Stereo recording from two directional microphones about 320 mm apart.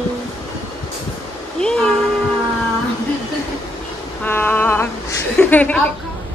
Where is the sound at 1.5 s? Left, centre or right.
Centre.